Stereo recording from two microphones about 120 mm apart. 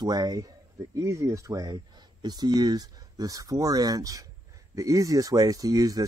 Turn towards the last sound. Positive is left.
turn(degrees=-30)  # may be behind; listen again after turning